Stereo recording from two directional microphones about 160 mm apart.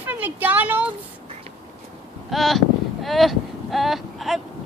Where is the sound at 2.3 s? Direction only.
Centre (ahead or behind).